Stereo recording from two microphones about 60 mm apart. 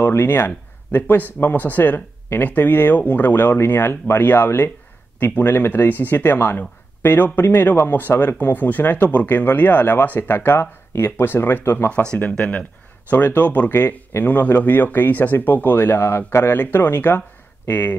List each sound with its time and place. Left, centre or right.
0.1 s speech: left
11.9 s speech: centre; by 16.5 s left
16.5 s speech: left